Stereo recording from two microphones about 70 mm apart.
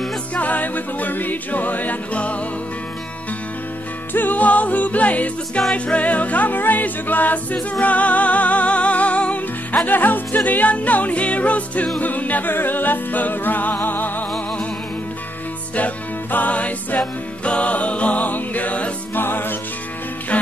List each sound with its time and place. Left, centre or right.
0.3 s music: left
4.1 s music: left
15.7 s music: left